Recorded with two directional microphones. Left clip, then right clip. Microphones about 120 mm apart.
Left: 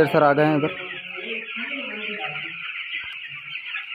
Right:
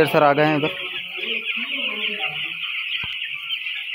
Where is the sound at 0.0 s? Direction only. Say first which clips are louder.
Right 1 dB; 20° left (ahead or behind).